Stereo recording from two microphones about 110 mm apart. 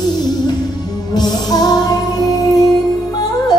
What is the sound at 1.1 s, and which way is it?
Music, 40° left (ahead or behind).